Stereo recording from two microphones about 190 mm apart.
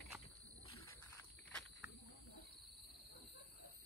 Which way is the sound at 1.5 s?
Centre (ahead or behind).